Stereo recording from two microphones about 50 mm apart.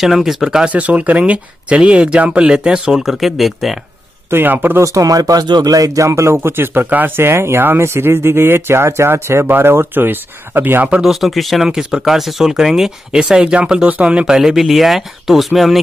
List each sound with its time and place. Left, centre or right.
0.0 s speech: centre
0.7 s speech: right; by 3.7 s centre
4.3 s speech: right
4.7 s speech: right
6.3 s speech: right
7.2 s speech: right
11.0 s speech: centre; by 14.2 s right
14.2 s speech: centre